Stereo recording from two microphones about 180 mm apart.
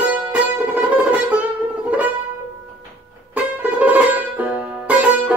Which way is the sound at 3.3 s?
10° right (ahead or behind).